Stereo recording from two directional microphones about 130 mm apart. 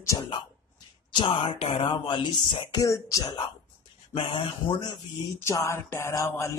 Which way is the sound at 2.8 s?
25° left (ahead or behind).